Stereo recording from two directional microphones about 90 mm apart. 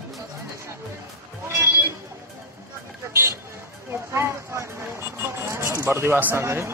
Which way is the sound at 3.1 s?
30° right (ahead or behind).